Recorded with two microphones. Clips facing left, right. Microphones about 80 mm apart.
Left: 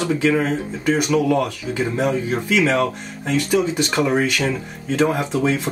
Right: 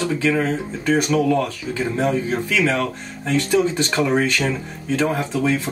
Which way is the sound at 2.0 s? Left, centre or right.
Centre.